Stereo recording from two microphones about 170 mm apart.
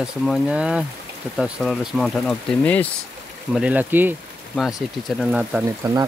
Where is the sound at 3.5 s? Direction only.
5° right (ahead or behind).